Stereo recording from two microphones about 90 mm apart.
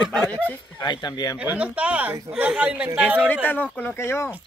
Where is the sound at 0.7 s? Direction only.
55° left (ahead or behind).